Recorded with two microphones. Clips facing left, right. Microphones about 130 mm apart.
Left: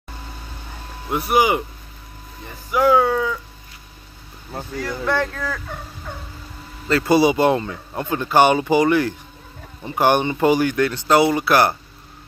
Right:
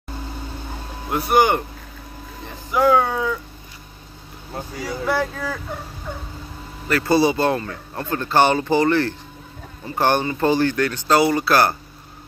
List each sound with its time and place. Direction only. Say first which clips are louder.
1.1 s speech: right 1 dB; centre (ahead or behind)
2.7 s speech: left 1 dB; 10° left (ahead or behind)
4.7 s speech: left 1 dB; 10° right (ahead or behind)
6.9 s speech: left 2 dB; 20° left (ahead or behind)